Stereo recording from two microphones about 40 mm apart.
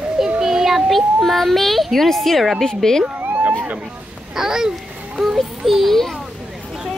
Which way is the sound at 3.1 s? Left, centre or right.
Right.